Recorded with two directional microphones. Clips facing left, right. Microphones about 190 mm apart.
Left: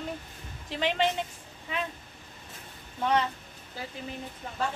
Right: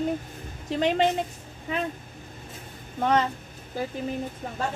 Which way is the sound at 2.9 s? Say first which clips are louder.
Right 3 dB; 50° right (ahead or behind).